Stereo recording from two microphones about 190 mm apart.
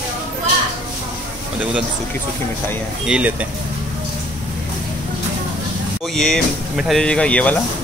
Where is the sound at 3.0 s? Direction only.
5° right (ahead or behind).